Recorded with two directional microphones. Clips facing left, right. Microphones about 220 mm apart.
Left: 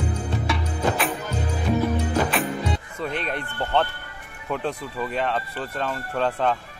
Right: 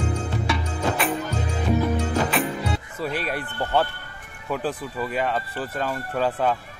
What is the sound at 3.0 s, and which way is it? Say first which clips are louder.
Speech: right 3 dB; 5° right (ahead or behind).